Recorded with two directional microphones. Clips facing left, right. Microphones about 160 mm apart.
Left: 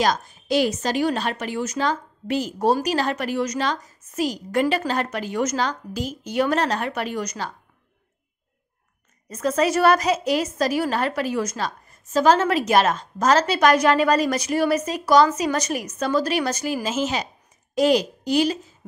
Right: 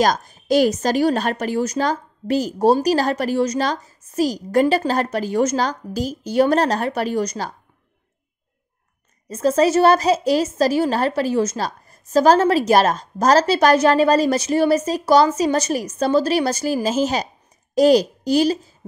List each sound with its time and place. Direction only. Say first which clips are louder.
0.0 s a woman's voice: right 3 dB; 40° right (ahead or behind)
9.3 s a woman's voice: right 5 dB; 30° right (ahead or behind)